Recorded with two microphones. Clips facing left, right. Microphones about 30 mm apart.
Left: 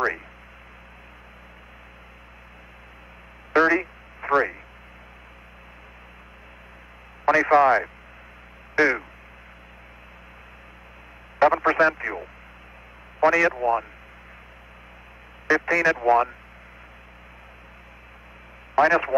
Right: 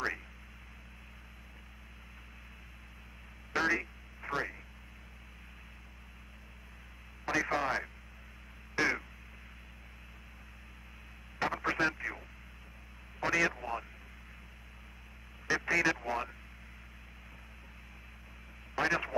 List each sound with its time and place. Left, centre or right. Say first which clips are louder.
3.5 s a sound: left 12 dB; left
4.2 s speech: left 15 dB; left
7.2 s speech: left 15 dB; left
8.7 s speech: left 11 dB; left
11.3 s speech: left 14 dB; left
13.2 s speech: left 11 dB; left
13.5 s speech: left 16 dB; left
15.4 s a man's voice: left 9 dB; left
16.0 s speech: left 17 dB; left
18.8 s speech: left 13 dB; left